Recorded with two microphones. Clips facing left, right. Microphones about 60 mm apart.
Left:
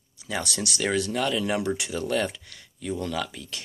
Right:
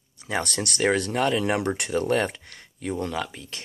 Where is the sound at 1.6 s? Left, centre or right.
Right.